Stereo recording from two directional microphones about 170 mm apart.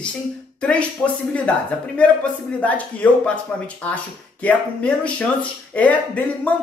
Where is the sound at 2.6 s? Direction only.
10° left (ahead or behind).